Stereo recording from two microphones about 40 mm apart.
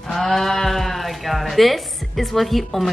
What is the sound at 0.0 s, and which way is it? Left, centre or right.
Speech, centre.